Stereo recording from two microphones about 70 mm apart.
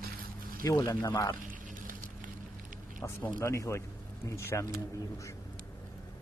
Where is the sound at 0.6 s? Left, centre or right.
Left.